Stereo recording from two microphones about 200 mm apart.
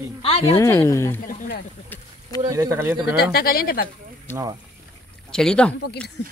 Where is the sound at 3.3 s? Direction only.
50° left (ahead or behind).